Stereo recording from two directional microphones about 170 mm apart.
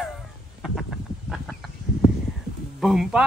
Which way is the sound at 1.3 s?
Centre (ahead or behind).